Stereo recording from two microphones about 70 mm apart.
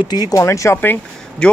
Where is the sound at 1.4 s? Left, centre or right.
Centre.